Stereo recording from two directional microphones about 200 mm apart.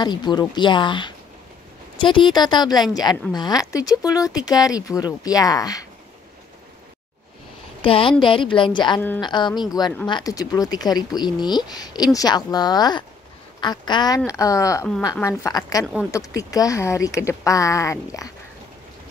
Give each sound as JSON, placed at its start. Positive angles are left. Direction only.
{"t": 0.0, "sound": "speech", "side_deg": 20}
{"t": 7.8, "sound": "speech", "side_deg": 25}
{"t": 15.8, "sound": "speech", "side_deg": -5}
{"t": 16.4, "sound": "speech", "side_deg": 15}